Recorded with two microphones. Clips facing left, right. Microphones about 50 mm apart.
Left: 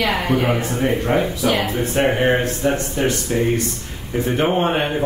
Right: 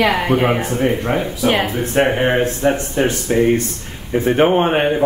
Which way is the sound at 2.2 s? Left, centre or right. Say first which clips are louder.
Right 2 dB; centre.